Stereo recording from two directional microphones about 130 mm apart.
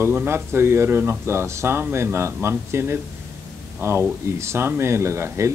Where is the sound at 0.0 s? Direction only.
15° right (ahead or behind).